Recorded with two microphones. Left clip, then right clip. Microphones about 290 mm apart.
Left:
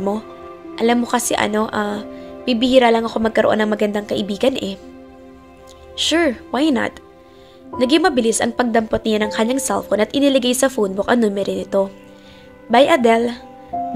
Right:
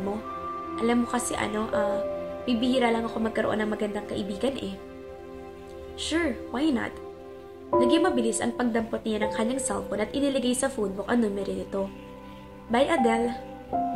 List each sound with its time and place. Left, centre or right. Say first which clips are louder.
0.7 s a woman's voice: left 10 dB; left
5.9 s a woman's voice: left 11 dB; left